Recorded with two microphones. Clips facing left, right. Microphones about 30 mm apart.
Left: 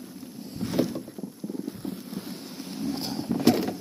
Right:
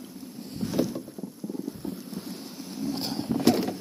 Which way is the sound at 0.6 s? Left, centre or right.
Left.